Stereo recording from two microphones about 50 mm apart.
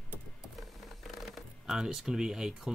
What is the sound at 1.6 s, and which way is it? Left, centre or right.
Speech, centre.